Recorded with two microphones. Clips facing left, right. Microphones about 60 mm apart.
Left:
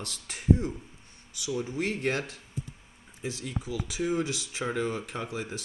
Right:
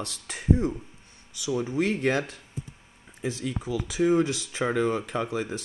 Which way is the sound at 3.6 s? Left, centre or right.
Right.